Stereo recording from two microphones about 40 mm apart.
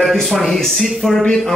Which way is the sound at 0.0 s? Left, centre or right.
Centre.